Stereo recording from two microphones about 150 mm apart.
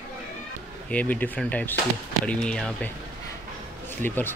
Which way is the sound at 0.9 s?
10° left (ahead or behind).